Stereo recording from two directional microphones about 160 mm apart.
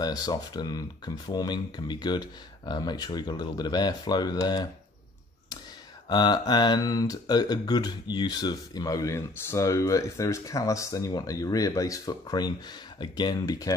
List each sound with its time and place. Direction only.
0.0 s speech: 25° left (ahead or behind)
6.0 s speech: 25° left (ahead or behind)